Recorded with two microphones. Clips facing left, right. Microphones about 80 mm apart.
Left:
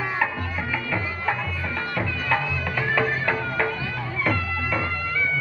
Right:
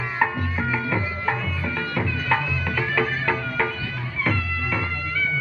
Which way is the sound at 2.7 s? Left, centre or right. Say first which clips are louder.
Left 1 dB; centre.